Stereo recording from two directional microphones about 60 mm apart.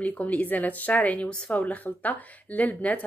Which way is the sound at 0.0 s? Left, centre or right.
Left.